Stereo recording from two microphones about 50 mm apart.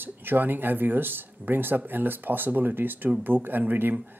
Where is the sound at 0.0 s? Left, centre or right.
Right.